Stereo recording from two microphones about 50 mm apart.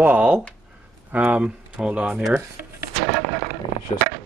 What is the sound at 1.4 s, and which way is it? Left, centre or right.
Speech, centre.